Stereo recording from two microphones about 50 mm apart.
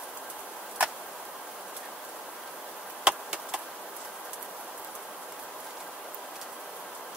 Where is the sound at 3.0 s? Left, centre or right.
Centre.